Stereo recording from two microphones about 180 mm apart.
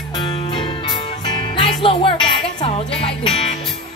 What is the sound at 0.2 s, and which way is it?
Music, 25° left (ahead or behind).